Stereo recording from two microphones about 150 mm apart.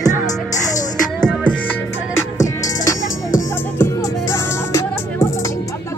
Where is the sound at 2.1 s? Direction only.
20° left (ahead or behind).